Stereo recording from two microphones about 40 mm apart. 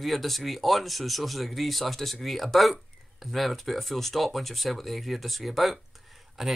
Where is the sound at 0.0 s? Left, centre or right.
Centre.